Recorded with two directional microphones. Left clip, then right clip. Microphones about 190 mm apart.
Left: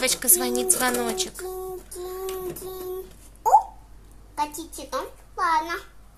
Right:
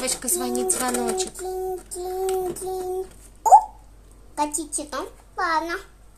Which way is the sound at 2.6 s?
30° right (ahead or behind).